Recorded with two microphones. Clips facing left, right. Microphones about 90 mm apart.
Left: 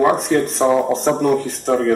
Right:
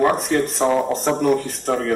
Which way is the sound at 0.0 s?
Centre (ahead or behind).